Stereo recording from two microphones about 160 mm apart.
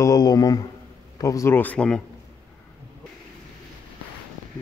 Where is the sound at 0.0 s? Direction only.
25° left (ahead or behind); by 2.0 s 5° left (ahead or behind).